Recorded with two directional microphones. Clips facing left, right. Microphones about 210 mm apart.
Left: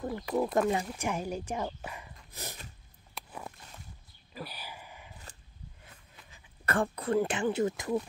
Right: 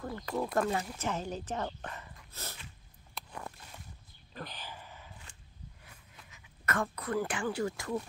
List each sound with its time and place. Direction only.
0.0 s speech: 15° left (ahead or behind)
3.2 s a sound: 5° left (ahead or behind)
6.3 s speech: 30° left (ahead or behind)